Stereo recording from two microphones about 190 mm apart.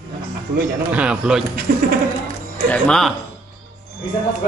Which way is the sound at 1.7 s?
45° right (ahead or behind).